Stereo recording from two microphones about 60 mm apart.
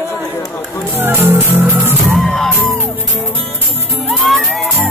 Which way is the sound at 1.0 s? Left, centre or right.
Right.